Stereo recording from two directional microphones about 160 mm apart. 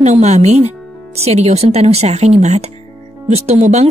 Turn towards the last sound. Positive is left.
turn(degrees=-45)  # may be behind; listen again after turning